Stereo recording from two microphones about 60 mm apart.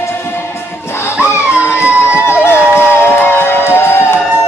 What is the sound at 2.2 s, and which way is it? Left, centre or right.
Crowd, left.